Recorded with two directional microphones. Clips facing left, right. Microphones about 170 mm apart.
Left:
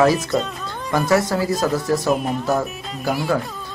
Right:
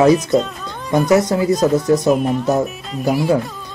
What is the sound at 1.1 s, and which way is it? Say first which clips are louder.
Speech: right 4 dB; 20° right (ahead or behind).